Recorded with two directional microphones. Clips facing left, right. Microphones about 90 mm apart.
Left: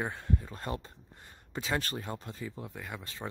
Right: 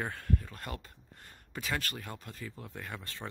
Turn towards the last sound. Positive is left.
turn(degrees=15)  # may be behind; listen again after turning